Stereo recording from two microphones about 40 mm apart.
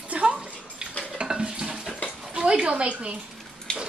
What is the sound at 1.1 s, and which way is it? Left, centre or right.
Water tap, right.